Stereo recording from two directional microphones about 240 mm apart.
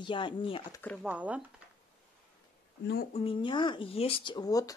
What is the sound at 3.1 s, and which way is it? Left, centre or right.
Speech, left.